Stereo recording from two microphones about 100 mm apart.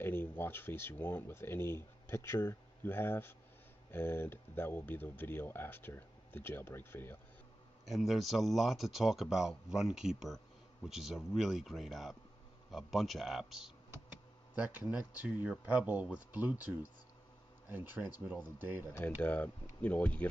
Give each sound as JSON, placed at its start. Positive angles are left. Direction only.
{"t": 0.0, "sound": "speech", "side_deg": 20}
{"t": 7.8, "sound": "speech", "side_deg": 0}
{"t": 14.5, "sound": "speech", "side_deg": -15}
{"t": 18.9, "sound": "speech", "side_deg": 15}